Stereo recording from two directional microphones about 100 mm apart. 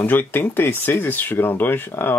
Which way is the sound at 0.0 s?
20° left (ahead or behind).